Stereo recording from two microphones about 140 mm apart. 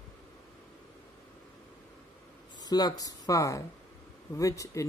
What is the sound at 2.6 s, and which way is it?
Speech, 30° left (ahead or behind).